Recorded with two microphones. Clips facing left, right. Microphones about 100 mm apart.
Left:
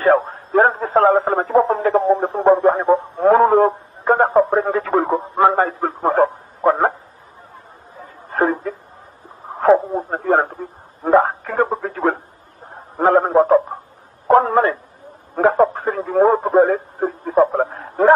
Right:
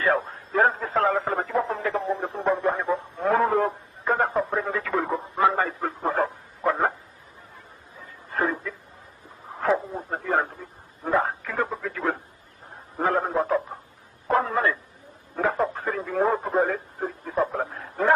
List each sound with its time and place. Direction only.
0.0 s radio: 40° left (ahead or behind)
8.0 s a sound: 40° left (ahead or behind)
15.3 s radio: 40° left (ahead or behind)